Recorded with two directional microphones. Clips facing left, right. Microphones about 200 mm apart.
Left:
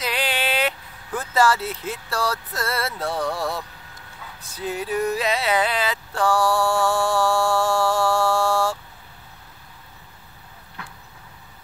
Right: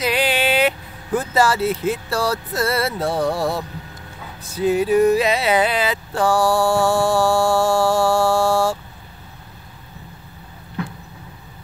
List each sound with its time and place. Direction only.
0.0 s vehicle: 10° right (ahead or behind)
1.3 s speech: 10° right (ahead or behind)
3.1 s speech: 30° right (ahead or behind)
4.6 s speech: 10° right (ahead or behind)
6.8 s a sound: 5° right (ahead or behind)